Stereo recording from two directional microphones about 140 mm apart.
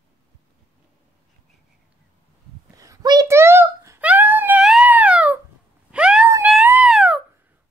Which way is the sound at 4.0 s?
10° right (ahead or behind).